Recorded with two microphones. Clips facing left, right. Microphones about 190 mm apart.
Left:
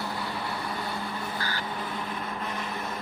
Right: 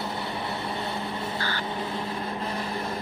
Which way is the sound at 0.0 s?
25° right (ahead or behind).